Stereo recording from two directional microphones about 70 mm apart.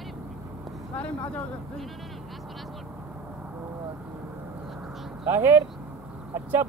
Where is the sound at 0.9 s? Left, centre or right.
Centre.